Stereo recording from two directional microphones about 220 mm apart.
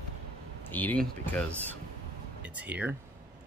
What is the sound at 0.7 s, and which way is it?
Speech, 10° left (ahead or behind).